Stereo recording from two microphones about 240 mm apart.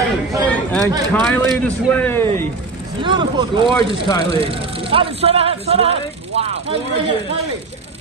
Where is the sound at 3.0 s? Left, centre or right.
Centre.